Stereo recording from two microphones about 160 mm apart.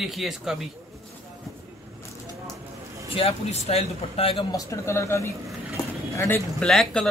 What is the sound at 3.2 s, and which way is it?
Speech, 40° left (ahead or behind).